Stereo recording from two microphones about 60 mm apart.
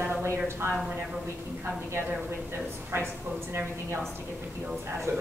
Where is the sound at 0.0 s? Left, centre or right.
Right.